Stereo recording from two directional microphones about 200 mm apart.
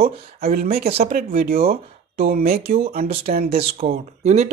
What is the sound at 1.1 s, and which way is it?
Speech, 45° right (ahead or behind).